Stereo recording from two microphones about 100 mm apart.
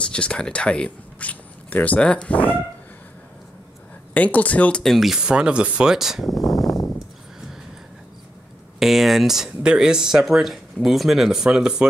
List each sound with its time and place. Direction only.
0.0 s speech: 10° left (ahead or behind)
4.1 s speech: 15° left (ahead or behind)
4.8 s speech: centre (ahead or behind)
8.7 s speech: centre (ahead or behind)